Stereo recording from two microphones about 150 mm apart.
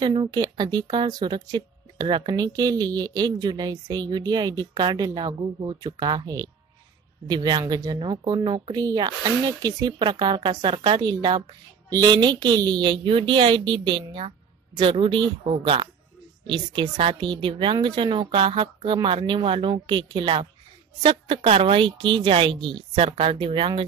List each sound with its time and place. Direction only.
0.0 s speech: 30° right (ahead or behind)